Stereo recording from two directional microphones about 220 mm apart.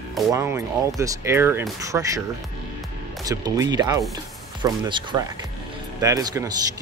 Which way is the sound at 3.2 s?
15° right (ahead or behind).